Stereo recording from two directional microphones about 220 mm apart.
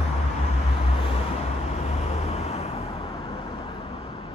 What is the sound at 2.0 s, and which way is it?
Vehicle, 30° left (ahead or behind).